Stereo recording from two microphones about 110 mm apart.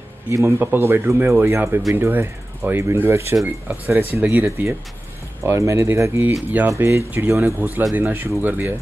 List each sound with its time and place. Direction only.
0.3 s speech: 25° right (ahead or behind)